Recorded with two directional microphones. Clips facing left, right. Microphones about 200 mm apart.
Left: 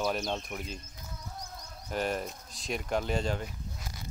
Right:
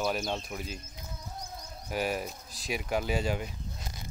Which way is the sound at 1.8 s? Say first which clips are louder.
Even; 5° right (ahead or behind).